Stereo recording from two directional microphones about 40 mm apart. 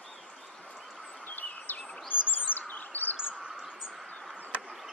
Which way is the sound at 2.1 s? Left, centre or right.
Left.